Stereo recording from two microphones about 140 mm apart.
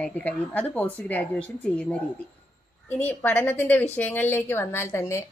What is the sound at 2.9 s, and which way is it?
Speech, 15° left (ahead or behind).